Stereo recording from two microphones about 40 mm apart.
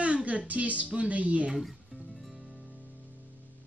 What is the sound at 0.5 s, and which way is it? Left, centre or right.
A woman's voice, right.